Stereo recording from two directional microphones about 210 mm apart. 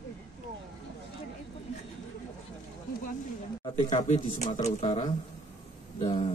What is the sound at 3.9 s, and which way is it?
Speech, 35° left (ahead or behind).